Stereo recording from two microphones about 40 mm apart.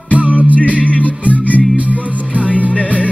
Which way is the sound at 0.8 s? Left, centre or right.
Left.